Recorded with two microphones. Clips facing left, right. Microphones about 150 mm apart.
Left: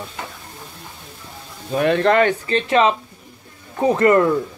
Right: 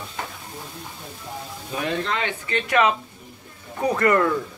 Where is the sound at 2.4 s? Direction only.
30° left (ahead or behind).